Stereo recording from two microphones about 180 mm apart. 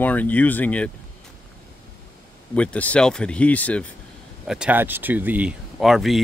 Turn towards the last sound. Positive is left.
turn(degrees=0)  # may be behind; listen again after turning